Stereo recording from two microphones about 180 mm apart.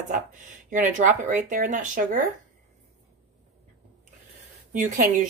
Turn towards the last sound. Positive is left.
turn(degrees=-45)  # may be behind; listen again after turning